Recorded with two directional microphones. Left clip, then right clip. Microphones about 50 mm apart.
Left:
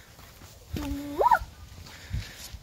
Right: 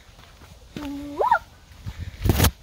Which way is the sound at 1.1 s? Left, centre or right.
Centre.